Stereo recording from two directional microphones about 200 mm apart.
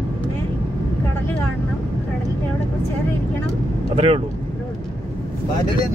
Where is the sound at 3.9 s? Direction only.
30° right (ahead or behind).